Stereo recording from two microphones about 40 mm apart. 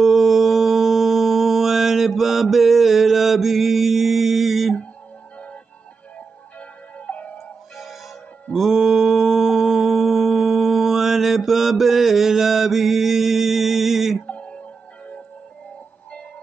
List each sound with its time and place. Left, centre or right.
0.0 s mantra: centre
7.0 s music: left
7.7 s music: centre
8.5 s mantra: centre
14.2 s music: left